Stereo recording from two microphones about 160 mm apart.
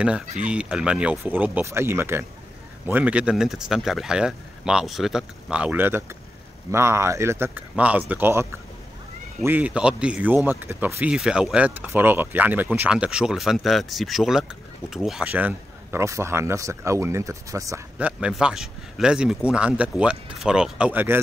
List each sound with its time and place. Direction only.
0.4 s speech: 5° right (ahead or behind)
17.9 s speech: 10° right (ahead or behind)